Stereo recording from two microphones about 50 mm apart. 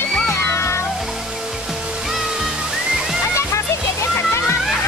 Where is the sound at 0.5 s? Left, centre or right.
Left.